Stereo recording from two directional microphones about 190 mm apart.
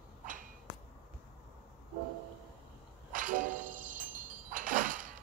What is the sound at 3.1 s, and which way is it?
Music, 45° right (ahead or behind).